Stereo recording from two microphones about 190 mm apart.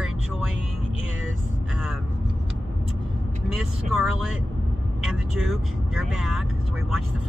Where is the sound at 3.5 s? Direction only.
Centre (ahead or behind).